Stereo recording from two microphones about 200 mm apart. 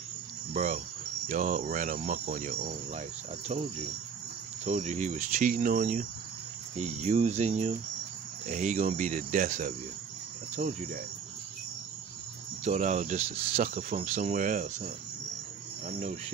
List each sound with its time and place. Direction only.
0.5 s speech: 35° right (ahead or behind)
4.6 s speech: 35° right (ahead or behind)
12.6 s speech: 35° right (ahead or behind)